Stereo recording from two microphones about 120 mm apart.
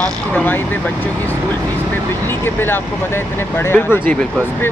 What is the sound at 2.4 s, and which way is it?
Speech, 20° left (ahead or behind).